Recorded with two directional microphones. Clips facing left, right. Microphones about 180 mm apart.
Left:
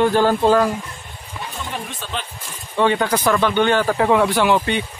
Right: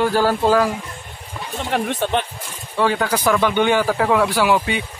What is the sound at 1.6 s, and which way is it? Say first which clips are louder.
Speech: right 12 dB; 65° right (ahead or behind).